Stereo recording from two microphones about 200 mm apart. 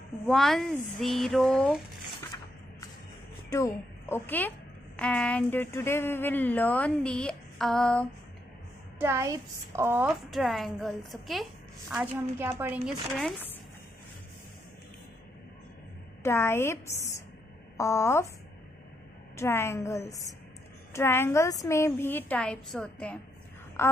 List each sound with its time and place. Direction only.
0.3 s speech: centre (ahead or behind)
3.4 s speech: 15° left (ahead or behind)
8.9 s a woman's voice: 10° right (ahead or behind)
10.3 s speech: centre (ahead or behind)
11.9 s a woman's voice: 10° right (ahead or behind)
16.2 s speech: 10° left (ahead or behind)
19.3 s speech: 10° left (ahead or behind)